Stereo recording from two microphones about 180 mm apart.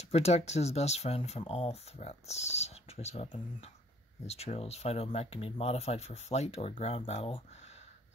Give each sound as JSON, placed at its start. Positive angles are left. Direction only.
{"t": 0.0, "sound": "speech", "side_deg": 35}